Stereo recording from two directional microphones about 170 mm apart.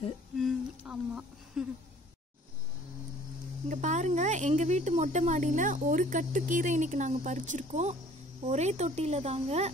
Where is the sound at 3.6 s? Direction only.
45° right (ahead or behind).